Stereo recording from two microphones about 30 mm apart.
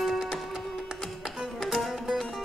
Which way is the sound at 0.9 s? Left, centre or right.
Right.